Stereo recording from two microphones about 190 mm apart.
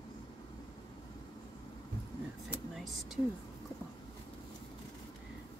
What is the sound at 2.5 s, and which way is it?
Vehicle, centre (ahead or behind).